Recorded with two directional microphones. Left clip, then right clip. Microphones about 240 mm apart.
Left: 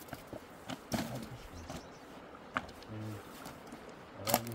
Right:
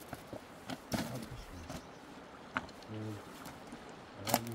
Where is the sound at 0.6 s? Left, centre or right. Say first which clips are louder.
Left 1 dB; centre.